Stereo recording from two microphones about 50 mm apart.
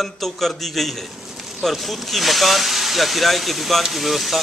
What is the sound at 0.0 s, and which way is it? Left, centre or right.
A man's voice, centre.